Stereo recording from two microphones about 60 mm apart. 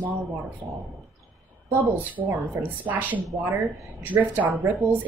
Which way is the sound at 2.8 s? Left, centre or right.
Right.